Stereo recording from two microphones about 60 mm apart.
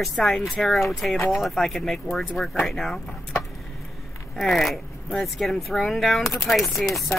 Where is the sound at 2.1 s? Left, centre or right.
Centre.